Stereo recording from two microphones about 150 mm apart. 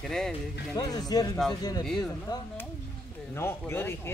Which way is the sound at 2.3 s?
25° left (ahead or behind).